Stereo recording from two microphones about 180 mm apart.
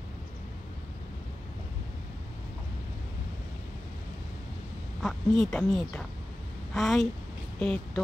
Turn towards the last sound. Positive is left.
turn(degrees=5)  # may be behind; listen again after turning